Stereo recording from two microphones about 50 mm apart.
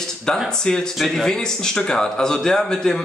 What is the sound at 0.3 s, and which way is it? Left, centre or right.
A man's voice, centre.